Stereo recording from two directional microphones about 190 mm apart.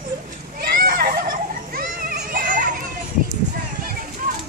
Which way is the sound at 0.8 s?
50° right (ahead or behind).